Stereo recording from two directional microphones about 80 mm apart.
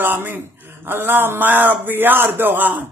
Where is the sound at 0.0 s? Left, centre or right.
Right.